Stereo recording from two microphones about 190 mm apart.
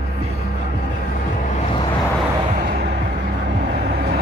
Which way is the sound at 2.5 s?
55° right (ahead or behind).